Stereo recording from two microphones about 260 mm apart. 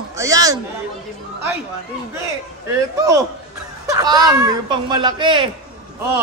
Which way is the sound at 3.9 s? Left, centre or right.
Centre.